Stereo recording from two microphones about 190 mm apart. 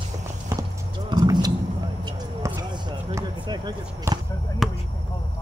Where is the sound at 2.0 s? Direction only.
20° right (ahead or behind).